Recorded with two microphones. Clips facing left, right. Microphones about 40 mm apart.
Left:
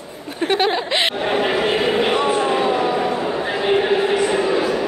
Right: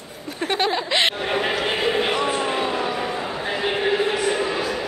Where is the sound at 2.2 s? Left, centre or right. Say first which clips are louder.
Left 5 dB; centre.